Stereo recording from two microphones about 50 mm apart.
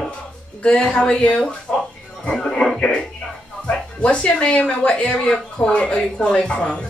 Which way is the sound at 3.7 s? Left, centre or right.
Left.